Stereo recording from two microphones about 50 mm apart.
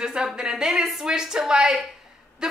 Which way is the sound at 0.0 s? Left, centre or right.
Centre.